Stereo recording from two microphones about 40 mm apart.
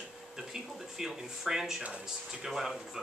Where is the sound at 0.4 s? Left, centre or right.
Centre.